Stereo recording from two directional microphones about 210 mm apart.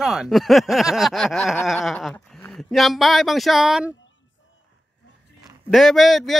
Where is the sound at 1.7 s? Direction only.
Centre (ahead or behind).